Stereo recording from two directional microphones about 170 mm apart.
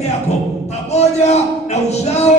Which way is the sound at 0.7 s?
40° left (ahead or behind).